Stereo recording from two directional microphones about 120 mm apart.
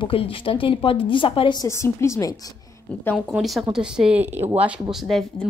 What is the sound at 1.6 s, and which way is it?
Speech, 25° left (ahead or behind).